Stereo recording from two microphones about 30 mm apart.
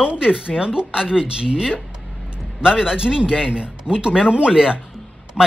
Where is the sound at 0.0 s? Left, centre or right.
Right.